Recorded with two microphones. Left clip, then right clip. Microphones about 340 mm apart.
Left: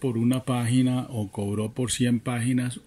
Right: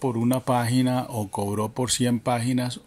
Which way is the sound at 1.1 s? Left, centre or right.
Right.